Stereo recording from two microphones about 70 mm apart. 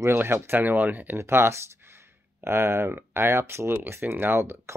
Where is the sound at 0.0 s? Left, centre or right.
Right.